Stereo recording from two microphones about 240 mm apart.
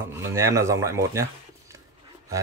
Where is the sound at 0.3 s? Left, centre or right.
Centre.